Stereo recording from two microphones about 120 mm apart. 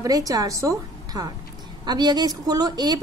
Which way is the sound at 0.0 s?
30° right (ahead or behind).